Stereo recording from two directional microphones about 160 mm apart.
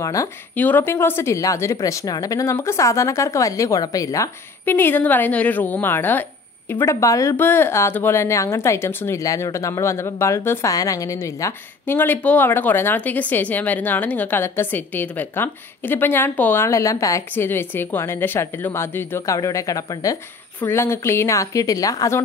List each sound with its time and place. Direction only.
0.0 s a woman's voice: 20° left (ahead or behind)